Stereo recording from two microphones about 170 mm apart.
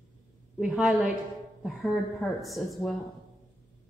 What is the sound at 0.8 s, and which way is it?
A woman's voice, centre (ahead or behind).